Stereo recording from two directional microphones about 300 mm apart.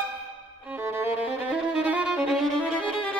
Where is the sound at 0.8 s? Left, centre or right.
Centre.